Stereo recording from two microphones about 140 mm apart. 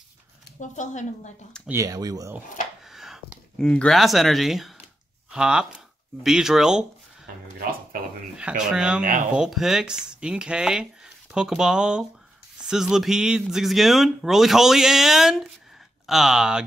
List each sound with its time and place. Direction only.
0.6 s speech: 60° left (ahead or behind)
1.7 s speech: 25° right (ahead or behind)
2.9 s speech: centre (ahead or behind)
8.4 s speech: 5° right (ahead or behind)